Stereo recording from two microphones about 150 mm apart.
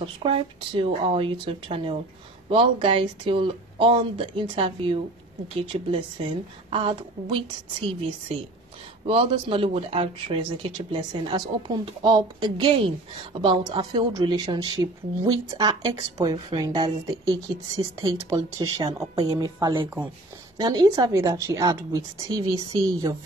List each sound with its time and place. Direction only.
0.0 s speech: 35° right (ahead or behind)
9.0 s a woman's voice: 35° right (ahead or behind)